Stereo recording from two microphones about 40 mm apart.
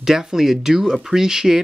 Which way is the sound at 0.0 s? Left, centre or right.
Centre.